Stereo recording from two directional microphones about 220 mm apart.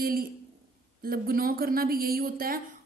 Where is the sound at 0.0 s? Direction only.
40° right (ahead or behind).